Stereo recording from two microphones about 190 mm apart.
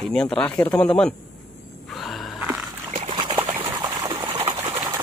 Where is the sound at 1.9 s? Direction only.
Centre (ahead or behind).